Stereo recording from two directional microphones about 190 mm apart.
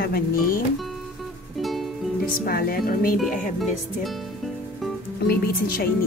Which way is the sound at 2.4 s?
50° left (ahead or behind).